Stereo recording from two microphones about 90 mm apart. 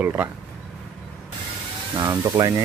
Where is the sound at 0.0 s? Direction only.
20° right (ahead or behind).